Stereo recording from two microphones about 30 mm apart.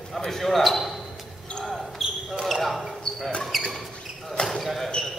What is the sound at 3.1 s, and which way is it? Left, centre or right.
Basketball bounce, left.